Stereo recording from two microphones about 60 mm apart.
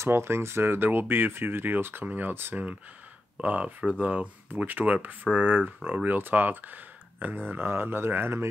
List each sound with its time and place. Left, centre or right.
0.0 s speech: right
2.5 s speech: right